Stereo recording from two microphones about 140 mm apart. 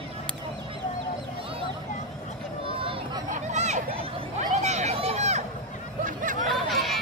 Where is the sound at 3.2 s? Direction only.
60° right (ahead or behind).